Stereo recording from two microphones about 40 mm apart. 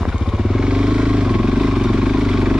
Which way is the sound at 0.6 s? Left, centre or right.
Centre.